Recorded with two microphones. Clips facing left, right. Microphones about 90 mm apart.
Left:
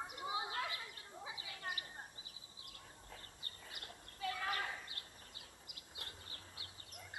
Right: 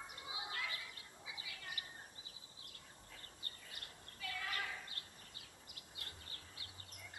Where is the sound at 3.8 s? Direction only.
30° left (ahead or behind).